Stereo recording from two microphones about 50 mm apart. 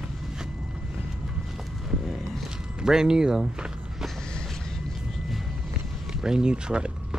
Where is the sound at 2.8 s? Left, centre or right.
Centre.